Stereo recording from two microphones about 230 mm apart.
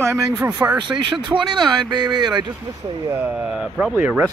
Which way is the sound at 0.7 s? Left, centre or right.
Centre.